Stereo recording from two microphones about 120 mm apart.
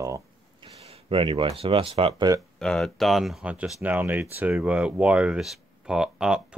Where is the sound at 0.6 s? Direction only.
50° right (ahead or behind).